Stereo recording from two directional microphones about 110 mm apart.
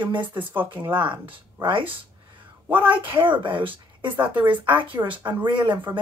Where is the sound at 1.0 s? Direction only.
50° right (ahead or behind).